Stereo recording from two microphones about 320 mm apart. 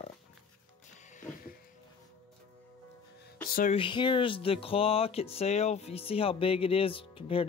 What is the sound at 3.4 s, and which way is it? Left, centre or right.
Speech, left.